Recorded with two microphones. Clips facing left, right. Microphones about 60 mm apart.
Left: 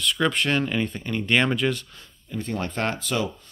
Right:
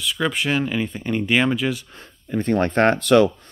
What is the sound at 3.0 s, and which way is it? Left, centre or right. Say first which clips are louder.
Speech: right 12 dB; right.